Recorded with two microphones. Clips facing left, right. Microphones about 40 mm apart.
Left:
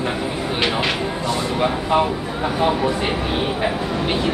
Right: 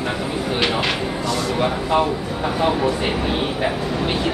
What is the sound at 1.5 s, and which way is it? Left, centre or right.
Speech, centre.